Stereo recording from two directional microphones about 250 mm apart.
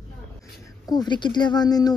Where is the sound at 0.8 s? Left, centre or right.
Centre.